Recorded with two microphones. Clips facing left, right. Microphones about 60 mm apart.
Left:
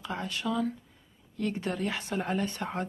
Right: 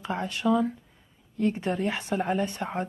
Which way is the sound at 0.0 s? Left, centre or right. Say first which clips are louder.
Right 6 dB; right.